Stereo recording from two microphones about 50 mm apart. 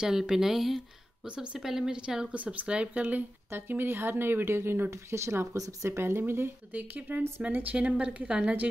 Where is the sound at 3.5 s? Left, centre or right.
Right.